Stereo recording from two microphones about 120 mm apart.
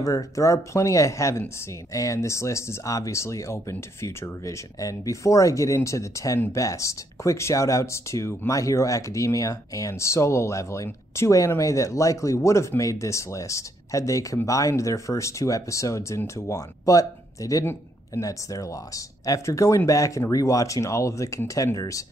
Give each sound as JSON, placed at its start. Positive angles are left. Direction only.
{"t": 0.0, "sound": "speech", "side_deg": 30}